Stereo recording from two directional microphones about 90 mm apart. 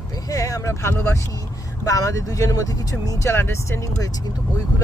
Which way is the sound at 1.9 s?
40° left (ahead or behind).